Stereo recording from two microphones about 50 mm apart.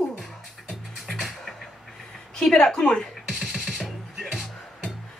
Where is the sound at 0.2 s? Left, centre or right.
Centre.